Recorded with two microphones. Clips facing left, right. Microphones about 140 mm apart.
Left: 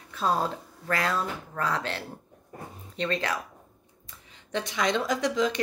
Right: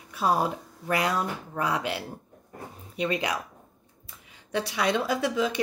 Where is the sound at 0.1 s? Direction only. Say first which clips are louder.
Right 2 dB; 10° right (ahead or behind).